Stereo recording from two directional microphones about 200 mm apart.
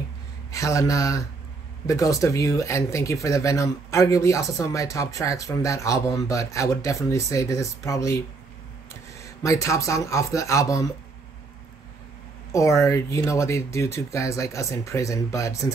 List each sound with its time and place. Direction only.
0.5 s a man's voice: 15° left (ahead or behind)
9.2 s speech: 15° left (ahead or behind)
12.5 s speech: 15° left (ahead or behind)